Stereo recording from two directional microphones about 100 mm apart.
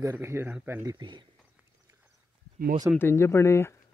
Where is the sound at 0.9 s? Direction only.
50° right (ahead or behind).